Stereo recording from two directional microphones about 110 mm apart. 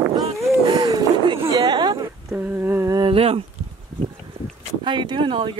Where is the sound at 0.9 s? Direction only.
35° right (ahead or behind).